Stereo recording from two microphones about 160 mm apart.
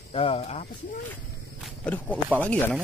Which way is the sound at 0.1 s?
35° left (ahead or behind).